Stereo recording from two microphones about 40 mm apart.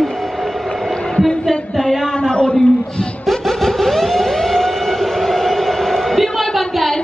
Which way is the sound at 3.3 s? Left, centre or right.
Centre.